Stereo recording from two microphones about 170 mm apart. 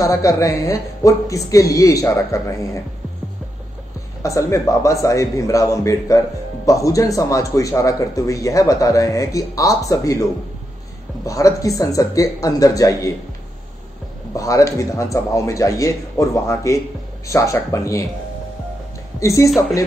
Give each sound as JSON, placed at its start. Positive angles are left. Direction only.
{"t": 0.0, "sound": "a man's voice", "side_deg": 20}
{"t": 4.2, "sound": "a man's voice", "side_deg": 20}
{"t": 11.2, "sound": "a man's voice", "side_deg": 20}
{"t": 14.3, "sound": "speech", "side_deg": 20}
{"t": 19.1, "sound": "speech", "side_deg": 20}